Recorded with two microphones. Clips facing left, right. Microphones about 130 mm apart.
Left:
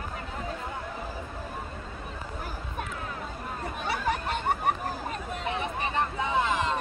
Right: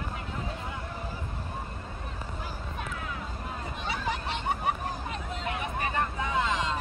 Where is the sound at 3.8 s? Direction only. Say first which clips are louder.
Left 4 dB; 50° left (ahead or behind).